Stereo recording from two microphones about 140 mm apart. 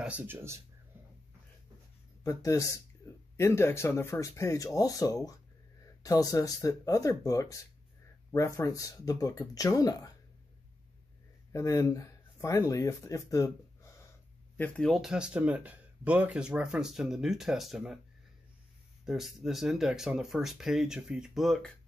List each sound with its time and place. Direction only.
0.0 s speech: 10° right (ahead or behind)
2.2 s speech: 25° left (ahead or behind)
11.5 s speech: 25° left (ahead or behind)
14.6 s speech: centre (ahead or behind)
19.0 s speech: centre (ahead or behind)